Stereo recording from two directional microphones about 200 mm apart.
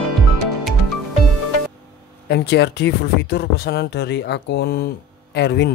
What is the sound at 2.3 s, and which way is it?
Speech, 60° left (ahead or behind).